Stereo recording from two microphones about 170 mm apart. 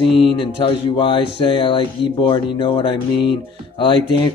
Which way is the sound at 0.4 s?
30° left (ahead or behind).